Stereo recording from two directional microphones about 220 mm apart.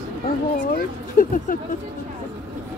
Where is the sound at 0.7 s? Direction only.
40° left (ahead or behind).